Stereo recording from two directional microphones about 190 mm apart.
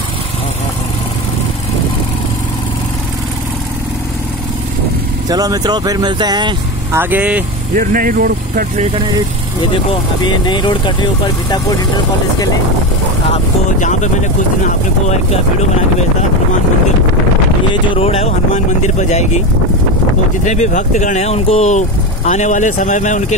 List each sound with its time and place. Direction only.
5.3 s speech: 20° right (ahead or behind)
7.0 s speech: 10° right (ahead or behind)
7.7 s speech: 45° right (ahead or behind)
10.2 s speech: 25° left (ahead or behind)
13.3 s speech: 40° left (ahead or behind)
17.8 s speech: 30° left (ahead or behind)
20.4 s speech: 40° left (ahead or behind)